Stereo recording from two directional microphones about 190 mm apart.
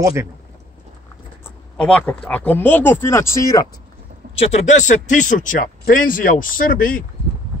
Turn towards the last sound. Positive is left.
turn(degrees=50)  # may be behind; listen again after turning